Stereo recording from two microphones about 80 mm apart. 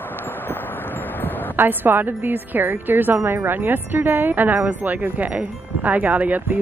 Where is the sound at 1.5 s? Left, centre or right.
Right.